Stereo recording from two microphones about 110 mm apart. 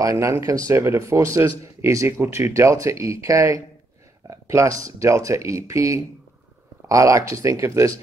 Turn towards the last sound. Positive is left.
turn(degrees=-25)  # may be behind; listen again after turning